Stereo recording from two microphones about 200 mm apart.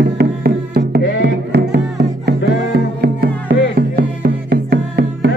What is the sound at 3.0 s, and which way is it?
Music, 50° right (ahead or behind).